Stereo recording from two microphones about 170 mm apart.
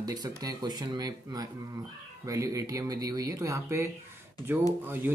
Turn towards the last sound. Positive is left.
turn(degrees=-10)  # may be behind; listen again after turning